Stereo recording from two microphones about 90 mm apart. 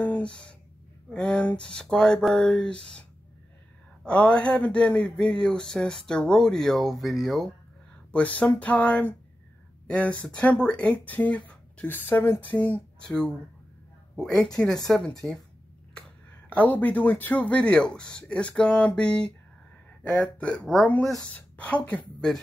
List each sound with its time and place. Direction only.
0.0 s a sound: 15° left (ahead or behind)
1.1 s speech: 10° left (ahead or behind)
8.1 s speech: 15° left (ahead or behind)
14.9 s speech: 10° left (ahead or behind)
16.4 s speech: 15° left (ahead or behind)